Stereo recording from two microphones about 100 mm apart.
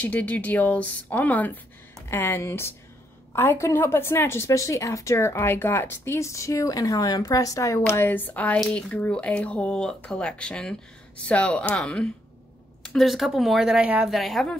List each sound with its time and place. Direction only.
0.0 s a woman's voice: 15° left (ahead or behind); by 14.1 s 10° right (ahead or behind)
14.1 s speech: centre (ahead or behind)